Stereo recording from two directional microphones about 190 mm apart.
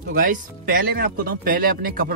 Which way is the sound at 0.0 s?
45° right (ahead or behind).